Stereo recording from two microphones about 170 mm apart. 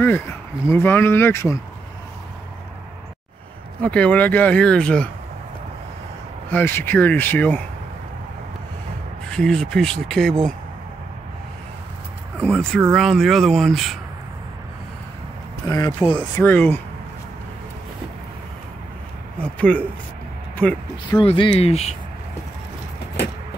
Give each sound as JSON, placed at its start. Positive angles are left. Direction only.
{"t": 0.0, "sound": "speech", "side_deg": 10}
{"t": 3.8, "sound": "speech", "side_deg": 10}
{"t": 6.5, "sound": "speech", "side_deg": 10}
{"t": 9.3, "sound": "speech", "side_deg": 5}
{"t": 12.9, "sound": "speech", "side_deg": 0}
{"t": 15.7, "sound": "speech", "side_deg": 15}
{"t": 19.4, "sound": "speech", "side_deg": 5}
{"t": 21.1, "sound": "speech", "side_deg": 30}